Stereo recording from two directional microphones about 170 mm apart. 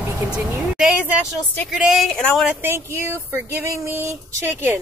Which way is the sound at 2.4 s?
10° right (ahead or behind).